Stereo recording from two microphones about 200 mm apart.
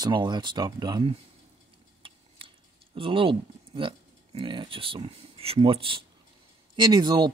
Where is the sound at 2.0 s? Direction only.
25° right (ahead or behind).